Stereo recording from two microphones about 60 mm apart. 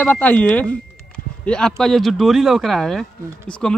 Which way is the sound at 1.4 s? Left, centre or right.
Centre.